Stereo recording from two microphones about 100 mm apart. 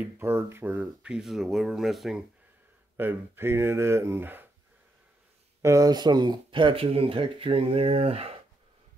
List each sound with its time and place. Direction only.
0.0 s speech: 20° right (ahead or behind)
1.0 s speech: 5° right (ahead or behind)
3.0 s speech: 20° right (ahead or behind)
5.6 s speech: 35° right (ahead or behind); by 8.4 s 85° right